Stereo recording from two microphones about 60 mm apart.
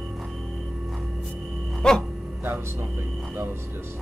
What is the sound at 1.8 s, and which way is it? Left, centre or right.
Speech, centre.